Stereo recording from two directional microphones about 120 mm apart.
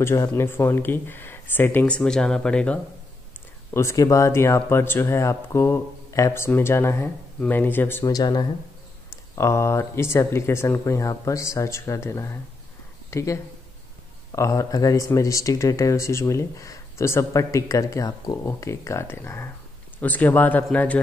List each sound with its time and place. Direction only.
0.0 s speech: 25° left (ahead or behind)
3.7 s speech: 25° left (ahead or behind)
8.1 s speech: 35° left (ahead or behind); by 21.0 s 10° left (ahead or behind)